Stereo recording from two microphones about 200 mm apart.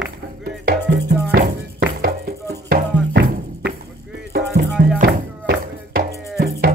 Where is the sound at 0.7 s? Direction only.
40° right (ahead or behind).